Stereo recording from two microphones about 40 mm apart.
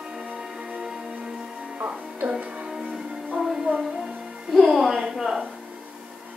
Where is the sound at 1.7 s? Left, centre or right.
Right.